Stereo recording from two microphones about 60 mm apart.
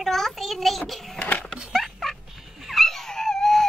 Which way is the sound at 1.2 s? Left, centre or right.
Left.